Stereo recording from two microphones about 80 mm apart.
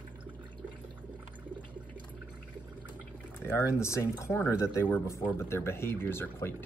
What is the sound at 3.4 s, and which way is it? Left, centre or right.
Speech, left.